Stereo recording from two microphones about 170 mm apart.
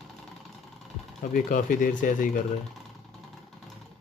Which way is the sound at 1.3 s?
50° left (ahead or behind).